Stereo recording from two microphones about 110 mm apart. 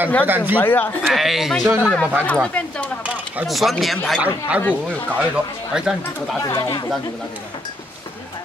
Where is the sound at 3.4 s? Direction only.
Centre (ahead or behind).